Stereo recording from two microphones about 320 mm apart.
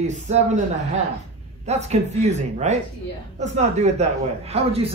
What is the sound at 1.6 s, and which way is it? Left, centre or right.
Speech, right.